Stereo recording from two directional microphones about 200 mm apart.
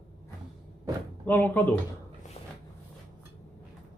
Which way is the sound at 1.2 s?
10° left (ahead or behind).